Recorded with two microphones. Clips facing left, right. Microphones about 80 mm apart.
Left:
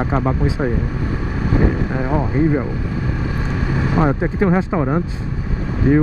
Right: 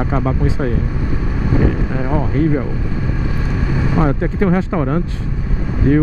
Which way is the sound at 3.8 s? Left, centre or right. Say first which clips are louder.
Even; centre.